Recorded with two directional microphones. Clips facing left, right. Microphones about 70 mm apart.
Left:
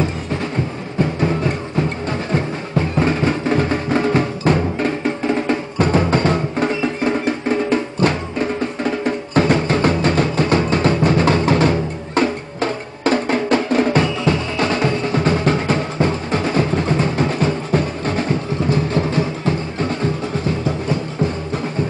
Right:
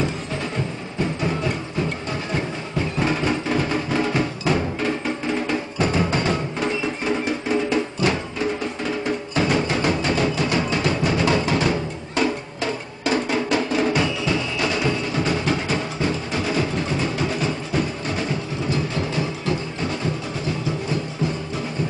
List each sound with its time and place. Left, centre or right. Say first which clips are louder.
3.1 s music: left 4 dB; left
5.8 s music: left 5 dB; left
8.0 s music: left 4 dB; left
9.3 s music: left 6 dB; left